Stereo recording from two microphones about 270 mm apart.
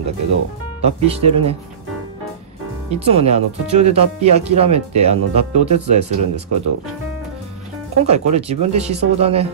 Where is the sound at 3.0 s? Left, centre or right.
Right.